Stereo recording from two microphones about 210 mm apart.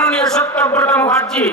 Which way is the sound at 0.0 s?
5° left (ahead or behind).